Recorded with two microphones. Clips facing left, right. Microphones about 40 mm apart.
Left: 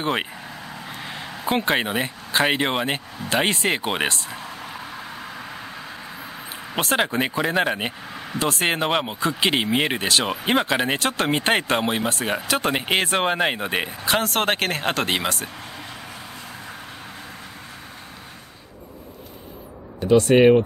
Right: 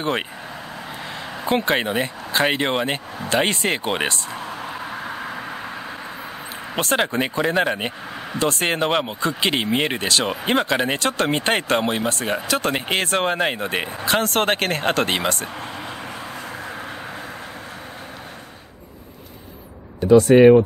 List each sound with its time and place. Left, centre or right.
0.0 s speech: centre
1.0 s a sound: centre
1.4 s speech: centre
4.4 s vehicle: centre
6.7 s speech: centre